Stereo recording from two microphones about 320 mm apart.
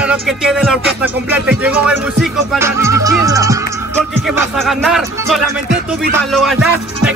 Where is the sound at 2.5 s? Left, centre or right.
Centre.